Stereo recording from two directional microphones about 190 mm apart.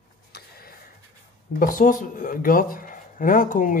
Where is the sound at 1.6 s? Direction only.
45° left (ahead or behind).